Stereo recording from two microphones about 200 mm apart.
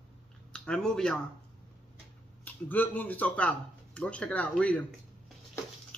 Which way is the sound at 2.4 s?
10° left (ahead or behind).